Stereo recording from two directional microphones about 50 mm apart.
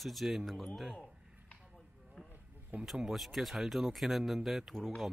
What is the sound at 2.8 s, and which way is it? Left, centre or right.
Speech, centre.